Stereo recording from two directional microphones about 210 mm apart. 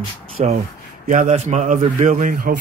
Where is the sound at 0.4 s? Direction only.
30° right (ahead or behind).